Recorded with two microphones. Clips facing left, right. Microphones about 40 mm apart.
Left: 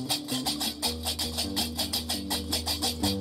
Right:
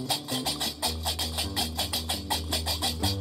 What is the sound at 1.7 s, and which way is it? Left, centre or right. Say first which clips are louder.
Music: right 1 dB; centre.